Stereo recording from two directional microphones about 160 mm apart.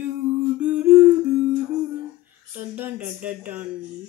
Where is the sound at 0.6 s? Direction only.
10° right (ahead or behind).